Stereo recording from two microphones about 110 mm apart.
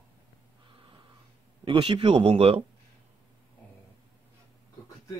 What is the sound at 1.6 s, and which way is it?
Speech, 50° right (ahead or behind).